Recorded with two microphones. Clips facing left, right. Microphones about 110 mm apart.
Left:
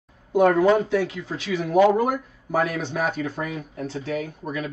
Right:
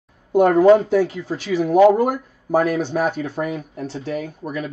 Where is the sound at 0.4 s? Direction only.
30° right (ahead or behind).